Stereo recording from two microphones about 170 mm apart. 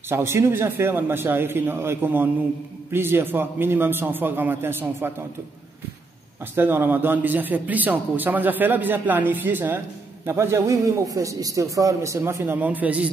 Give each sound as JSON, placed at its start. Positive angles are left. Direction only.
{"t": 0.1, "sound": "a man's voice", "side_deg": -15}
{"t": 6.5, "sound": "a man's voice", "side_deg": -15}